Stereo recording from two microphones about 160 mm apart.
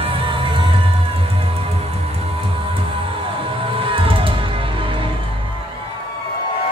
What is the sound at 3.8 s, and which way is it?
Music, 35° right (ahead or behind).